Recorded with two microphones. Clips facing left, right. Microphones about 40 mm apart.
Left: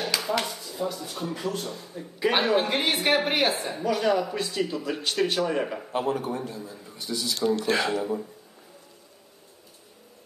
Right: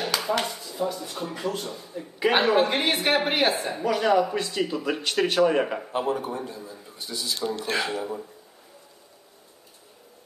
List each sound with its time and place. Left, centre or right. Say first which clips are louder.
0.0 s speech: right 1 dB; centre
2.3 s a woman's voice: right 3 dB; centre
5.5 s speech: right 4 dB; right
5.8 s speech: right 1 dB; centre
6.4 s a man's voice: left 1 dB; centre
7.5 s speech: left 2 dB; centre
7.9 s a woman's voice: left 3 dB; centre